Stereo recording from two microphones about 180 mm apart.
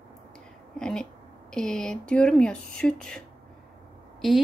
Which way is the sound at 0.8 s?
5° left (ahead or behind).